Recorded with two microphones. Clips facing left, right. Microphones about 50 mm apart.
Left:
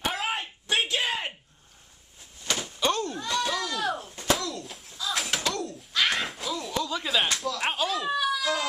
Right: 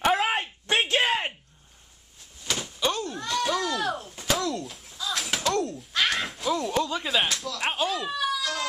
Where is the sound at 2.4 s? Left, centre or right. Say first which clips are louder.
Left 1 dB; centre.